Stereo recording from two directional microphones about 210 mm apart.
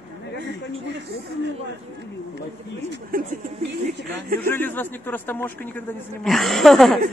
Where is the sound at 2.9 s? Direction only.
40° right (ahead or behind).